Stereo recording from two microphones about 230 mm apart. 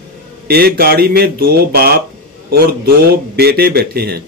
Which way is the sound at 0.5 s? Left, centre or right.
Right.